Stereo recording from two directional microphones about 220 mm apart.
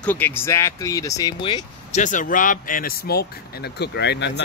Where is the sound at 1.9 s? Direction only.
35° left (ahead or behind).